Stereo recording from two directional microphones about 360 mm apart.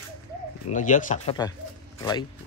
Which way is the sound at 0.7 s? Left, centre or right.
Left.